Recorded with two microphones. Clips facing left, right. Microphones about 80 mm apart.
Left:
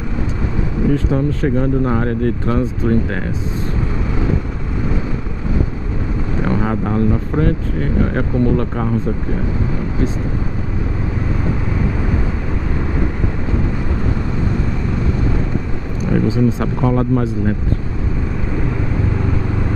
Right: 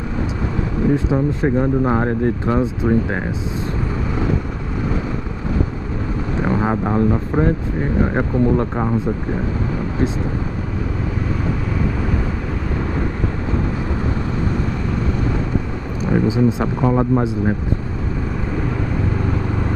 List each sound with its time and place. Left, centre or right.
0.9 s speech: centre
6.4 s speech: centre
16.1 s speech: centre